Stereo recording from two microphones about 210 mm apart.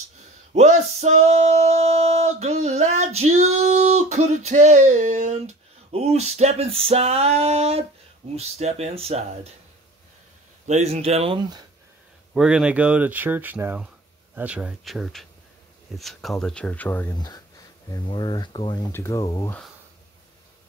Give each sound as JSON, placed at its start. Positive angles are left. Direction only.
{"t": 0.5, "sound": "music", "side_deg": -35}
{"t": 2.6, "sound": "female singing", "side_deg": -35}
{"t": 4.5, "sound": "speech", "side_deg": -35}
{"t": 8.4, "sound": "music", "side_deg": -30}
{"t": 10.7, "sound": "speech", "side_deg": -30}
{"t": 12.4, "sound": "speech", "side_deg": -5}